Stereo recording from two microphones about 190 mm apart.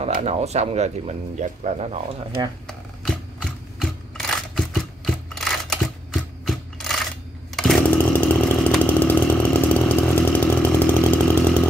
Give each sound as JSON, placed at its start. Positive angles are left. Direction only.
{"t": 0.0, "sound": "speech", "side_deg": -35}
{"t": 2.6, "sound": "shuffling cards", "side_deg": 0}
{"t": 3.8, "sound": "a sound", "side_deg": 0}
{"t": 7.5, "sound": "chainsaw", "side_deg": 0}